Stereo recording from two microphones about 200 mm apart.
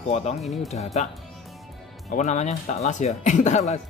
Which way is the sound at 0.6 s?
35° left (ahead or behind).